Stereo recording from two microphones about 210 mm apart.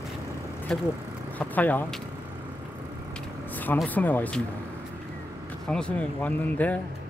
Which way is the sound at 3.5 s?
10° left (ahead or behind).